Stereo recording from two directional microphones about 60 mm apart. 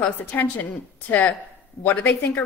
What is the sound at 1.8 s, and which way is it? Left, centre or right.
Speech, left.